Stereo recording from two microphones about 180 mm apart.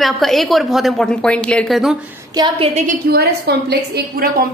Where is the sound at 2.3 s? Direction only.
25° right (ahead or behind).